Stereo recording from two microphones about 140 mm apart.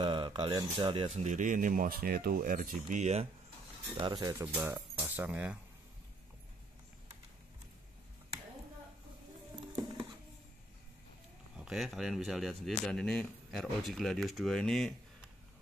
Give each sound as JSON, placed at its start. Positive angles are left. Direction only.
{"t": 0.0, "sound": "speech", "side_deg": -35}
{"t": 3.9, "sound": "speech", "side_deg": -35}
{"t": 11.6, "sound": "speech", "side_deg": 0}